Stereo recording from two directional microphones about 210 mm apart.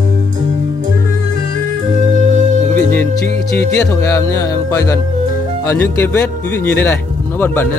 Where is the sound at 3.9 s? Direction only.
15° left (ahead or behind).